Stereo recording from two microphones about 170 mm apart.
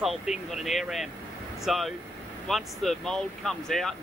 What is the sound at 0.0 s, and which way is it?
Speech, centre (ahead or behind).